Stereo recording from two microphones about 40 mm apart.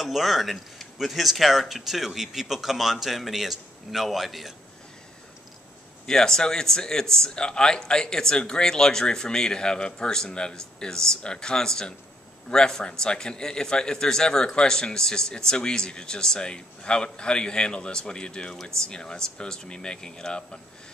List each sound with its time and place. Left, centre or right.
0.0 s speech: centre
6.0 s a man's voice: centre